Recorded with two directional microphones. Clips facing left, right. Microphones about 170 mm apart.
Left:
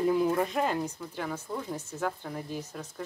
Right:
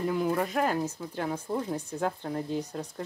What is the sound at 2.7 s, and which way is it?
Speech, 35° right (ahead or behind).